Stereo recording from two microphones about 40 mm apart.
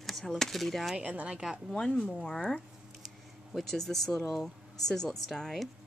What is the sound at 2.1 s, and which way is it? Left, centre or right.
Speech, centre.